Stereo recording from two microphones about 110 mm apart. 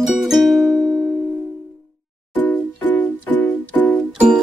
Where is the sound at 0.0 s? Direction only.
Centre (ahead or behind).